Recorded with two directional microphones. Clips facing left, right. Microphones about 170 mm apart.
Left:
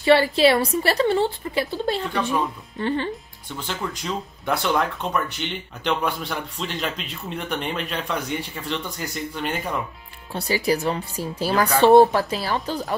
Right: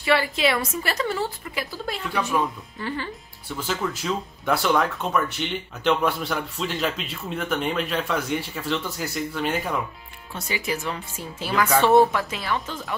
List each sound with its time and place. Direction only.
0.0 s a woman's voice: 30° left (ahead or behind)
3.4 s speech: 5° right (ahead or behind)
10.3 s a woman's voice: 35° left (ahead or behind)